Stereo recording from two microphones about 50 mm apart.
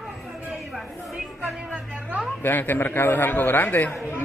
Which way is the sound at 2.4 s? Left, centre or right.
Left.